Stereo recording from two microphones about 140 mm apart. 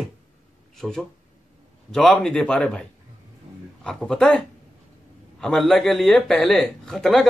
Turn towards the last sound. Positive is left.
turn(degrees=0)  # may be behind; listen again after turning